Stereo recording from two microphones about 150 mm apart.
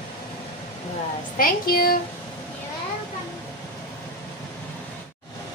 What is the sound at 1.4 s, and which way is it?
Speech, 75° left (ahead or behind).